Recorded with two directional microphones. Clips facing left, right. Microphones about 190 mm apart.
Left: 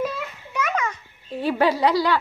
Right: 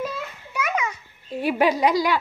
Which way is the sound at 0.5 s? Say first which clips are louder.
Left 1 dB; 10° right (ahead or behind).